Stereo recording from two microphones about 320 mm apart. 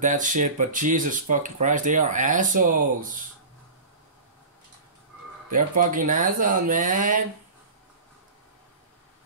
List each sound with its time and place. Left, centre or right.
0.0 s speech: right
5.5 s speech: right